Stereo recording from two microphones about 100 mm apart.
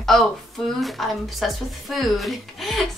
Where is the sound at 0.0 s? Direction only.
5° left (ahead or behind).